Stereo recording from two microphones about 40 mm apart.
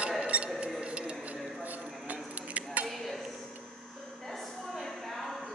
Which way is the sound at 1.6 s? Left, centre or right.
Right.